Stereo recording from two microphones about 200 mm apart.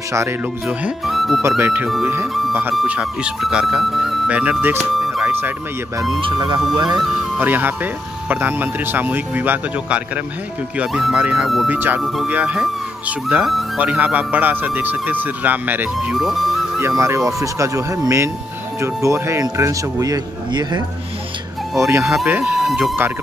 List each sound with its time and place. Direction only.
0.1 s speech: 10° right (ahead or behind)
4.7 s music: centre (ahead or behind)
5.9 s speech: 20° right (ahead or behind)
6.9 s speech: 5° right (ahead or behind)
17.0 s speech: 15° right (ahead or behind)
22.1 s speech: centre (ahead or behind)